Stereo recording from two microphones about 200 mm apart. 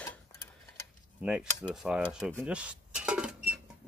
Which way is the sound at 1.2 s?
5° right (ahead or behind).